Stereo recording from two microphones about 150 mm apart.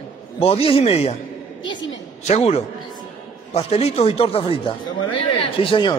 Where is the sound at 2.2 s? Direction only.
45° left (ahead or behind).